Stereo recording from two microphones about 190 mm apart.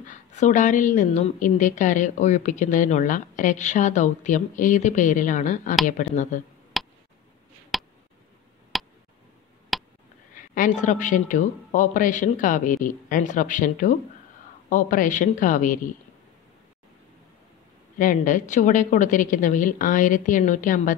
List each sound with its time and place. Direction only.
0.0 s a woman's voice: 40° left (ahead or behind)
6.7 s a sound: centre (ahead or behind)
7.7 s tick: centre (ahead or behind)
9.7 s a sound: centre (ahead or behind)
10.5 s a man's voice: 45° left (ahead or behind)
17.9 s a woman's voice: 45° left (ahead or behind)